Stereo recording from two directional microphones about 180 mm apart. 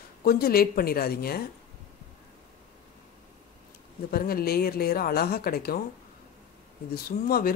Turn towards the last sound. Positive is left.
turn(degrees=55)  # may be behind; listen again after turning